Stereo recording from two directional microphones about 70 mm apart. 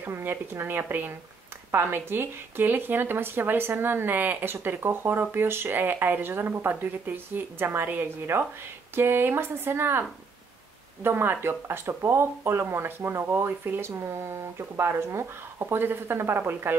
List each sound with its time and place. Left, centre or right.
0.0 s speech: right